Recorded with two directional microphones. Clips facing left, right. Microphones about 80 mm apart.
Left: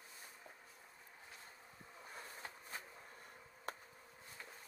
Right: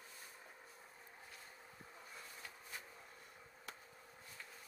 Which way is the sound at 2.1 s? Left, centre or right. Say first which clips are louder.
Left 5 dB; left.